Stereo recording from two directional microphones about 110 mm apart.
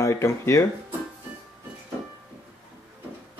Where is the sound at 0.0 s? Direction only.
25° left (ahead or behind).